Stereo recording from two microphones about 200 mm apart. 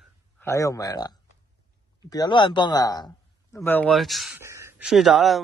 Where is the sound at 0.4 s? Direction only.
15° left (ahead or behind).